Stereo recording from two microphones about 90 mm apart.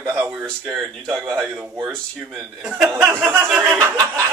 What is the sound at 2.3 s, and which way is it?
Speech, 15° right (ahead or behind).